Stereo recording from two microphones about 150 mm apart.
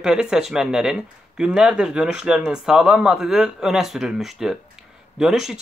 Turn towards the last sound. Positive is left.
turn(degrees=-5)  # may be behind; listen again after turning